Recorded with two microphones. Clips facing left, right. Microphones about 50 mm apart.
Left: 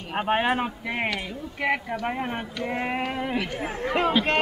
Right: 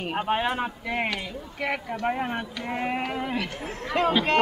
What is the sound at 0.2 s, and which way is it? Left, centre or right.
Speech, centre.